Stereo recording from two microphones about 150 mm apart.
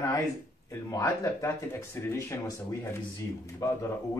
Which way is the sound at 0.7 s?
20° left (ahead or behind).